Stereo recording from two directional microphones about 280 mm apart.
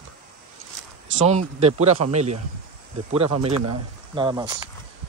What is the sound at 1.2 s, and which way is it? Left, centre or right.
Speech, right.